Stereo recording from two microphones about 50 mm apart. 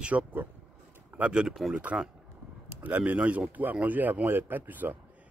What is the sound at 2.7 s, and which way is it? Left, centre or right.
Speech, right.